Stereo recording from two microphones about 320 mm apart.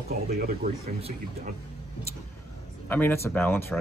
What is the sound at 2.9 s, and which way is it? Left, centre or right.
Speech, centre.